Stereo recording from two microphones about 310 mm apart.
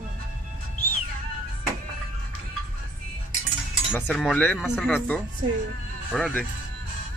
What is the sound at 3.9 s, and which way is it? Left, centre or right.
Speech, centre.